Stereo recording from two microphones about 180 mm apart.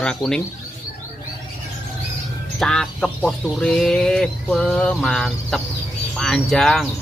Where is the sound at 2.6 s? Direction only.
5° left (ahead or behind).